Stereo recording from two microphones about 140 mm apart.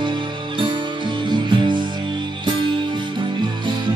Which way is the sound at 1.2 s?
35° right (ahead or behind).